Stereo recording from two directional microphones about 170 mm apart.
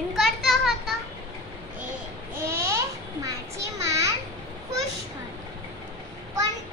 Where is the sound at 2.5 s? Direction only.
15° right (ahead or behind).